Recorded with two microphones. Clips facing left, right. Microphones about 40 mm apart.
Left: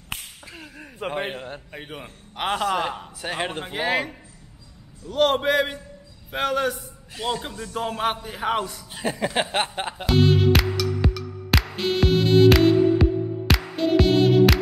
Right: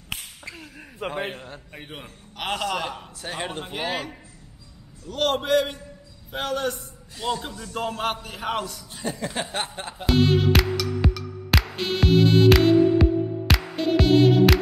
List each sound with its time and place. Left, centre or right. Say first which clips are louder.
0.7 s speech: left 1 dB; centre
1.2 s a man's voice: left 2 dB; left
1.9 s a man's voice: left 2 dB; centre
10.0 s music: left 1 dB; centre